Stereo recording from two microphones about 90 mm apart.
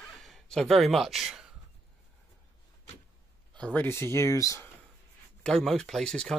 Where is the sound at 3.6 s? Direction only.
10° left (ahead or behind).